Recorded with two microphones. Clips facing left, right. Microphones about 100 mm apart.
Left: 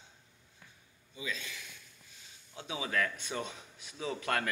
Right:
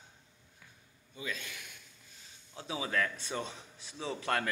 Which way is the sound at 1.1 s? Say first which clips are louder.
Even; 50° right (ahead or behind).